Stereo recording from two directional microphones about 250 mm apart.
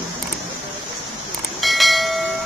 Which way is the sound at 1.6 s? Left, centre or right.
Centre.